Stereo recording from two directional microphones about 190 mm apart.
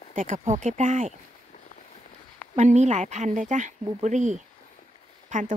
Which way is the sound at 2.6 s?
35° right (ahead or behind).